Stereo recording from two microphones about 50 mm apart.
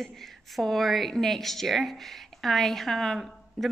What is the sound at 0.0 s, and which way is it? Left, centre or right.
A woman's voice, centre.